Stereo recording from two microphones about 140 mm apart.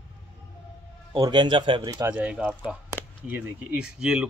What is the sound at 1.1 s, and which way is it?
Speech, 30° right (ahead or behind).